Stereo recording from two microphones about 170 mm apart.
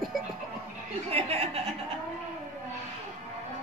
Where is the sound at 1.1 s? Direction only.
35° right (ahead or behind).